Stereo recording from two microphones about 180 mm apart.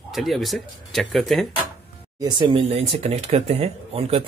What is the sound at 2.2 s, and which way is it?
Speech, 25° right (ahead or behind).